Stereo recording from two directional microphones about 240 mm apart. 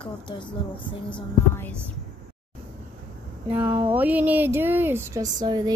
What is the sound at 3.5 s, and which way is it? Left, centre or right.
A woman's voice, centre.